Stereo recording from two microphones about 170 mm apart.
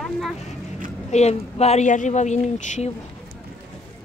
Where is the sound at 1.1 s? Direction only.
40° left (ahead or behind).